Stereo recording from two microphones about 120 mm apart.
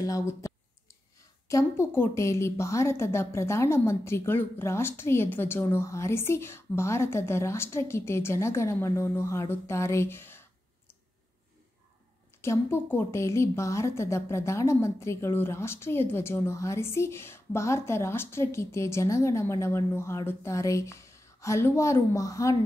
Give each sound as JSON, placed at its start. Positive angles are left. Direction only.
{"t": 0.0, "sound": "a sound", "side_deg": 25}
{"t": 1.5, "sound": "a woman's voice", "side_deg": 25}
{"t": 12.4, "sound": "a woman's voice", "side_deg": 20}